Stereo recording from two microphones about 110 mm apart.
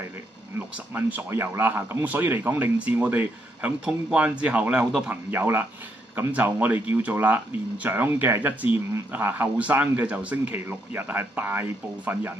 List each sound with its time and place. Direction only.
0.6 s speech: 15° right (ahead or behind)